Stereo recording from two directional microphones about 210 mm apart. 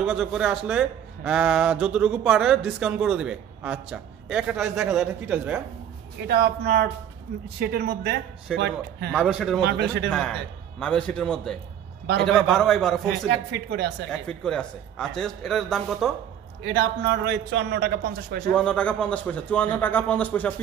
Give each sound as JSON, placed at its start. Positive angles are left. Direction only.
{"t": 0.0, "sound": "speech", "side_deg": 0}
{"t": 6.2, "sound": "a man's voice", "side_deg": -50}
{"t": 9.1, "sound": "speech", "side_deg": 0}
{"t": 9.7, "sound": "a man's voice", "side_deg": -50}
{"t": 10.0, "sound": "speech", "side_deg": 5}
{"t": 13.3, "sound": "a man's voice", "side_deg": -55}
{"t": 14.1, "sound": "speech", "side_deg": 5}
{"t": 16.6, "sound": "a man's voice", "side_deg": -55}
{"t": 18.5, "sound": "a man's voice", "side_deg": 5}